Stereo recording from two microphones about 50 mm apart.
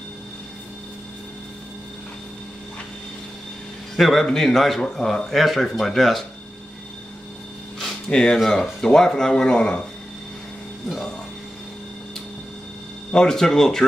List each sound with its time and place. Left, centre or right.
3.9 s speech: centre
7.8 s a sound: centre
8.5 s speech: centre
13.1 s speech: centre